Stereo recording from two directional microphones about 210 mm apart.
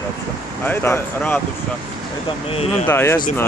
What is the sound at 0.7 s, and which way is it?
Speech, 10° left (ahead or behind).